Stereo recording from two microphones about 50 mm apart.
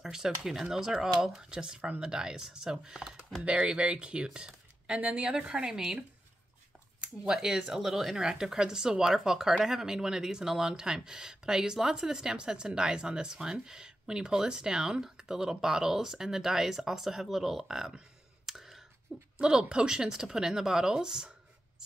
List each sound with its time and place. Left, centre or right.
0.0 s speech: centre
7.3 s speech: centre
19.3 s speech: centre